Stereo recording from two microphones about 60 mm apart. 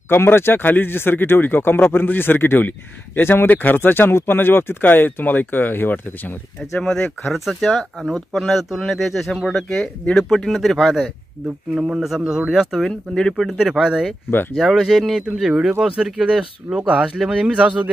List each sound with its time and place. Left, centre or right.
0.1 s speech: left
6.6 s speech: centre
11.7 s a man's voice: centre
12.7 s speech: centre
13.4 s a man's voice: centre; by 17.8 s right